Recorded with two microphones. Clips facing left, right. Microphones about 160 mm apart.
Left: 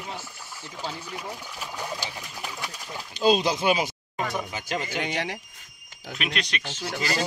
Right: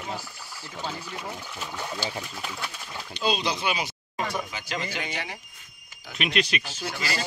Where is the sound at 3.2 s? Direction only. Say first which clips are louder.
Left 6 dB; 45° left (ahead or behind).